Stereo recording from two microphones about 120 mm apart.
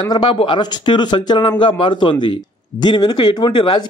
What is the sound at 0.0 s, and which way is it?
A man's voice, 40° left (ahead or behind).